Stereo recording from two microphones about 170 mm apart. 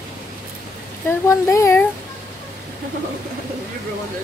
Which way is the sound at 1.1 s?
15° left (ahead or behind).